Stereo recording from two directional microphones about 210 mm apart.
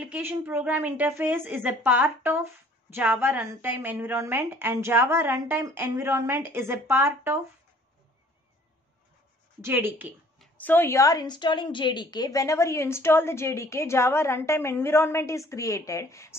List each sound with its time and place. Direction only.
0.0 s a woman's voice: 10° right (ahead or behind)
9.6 s a woman's voice: 10° right (ahead or behind)
10.4 s a woman's voice: 10° left (ahead or behind)